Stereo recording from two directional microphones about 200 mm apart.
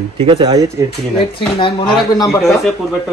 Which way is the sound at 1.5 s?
25° left (ahead or behind).